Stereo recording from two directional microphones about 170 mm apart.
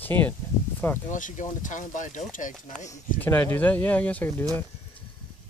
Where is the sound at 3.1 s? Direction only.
10° left (ahead or behind).